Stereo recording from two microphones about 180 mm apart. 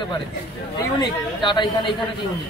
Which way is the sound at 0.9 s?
25° left (ahead or behind).